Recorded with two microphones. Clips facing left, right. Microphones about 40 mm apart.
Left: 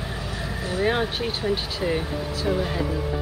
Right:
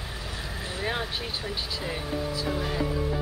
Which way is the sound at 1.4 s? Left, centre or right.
Centre.